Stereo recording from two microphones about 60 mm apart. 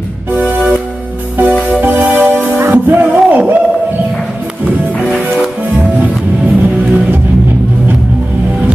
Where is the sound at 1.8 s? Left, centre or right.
Right.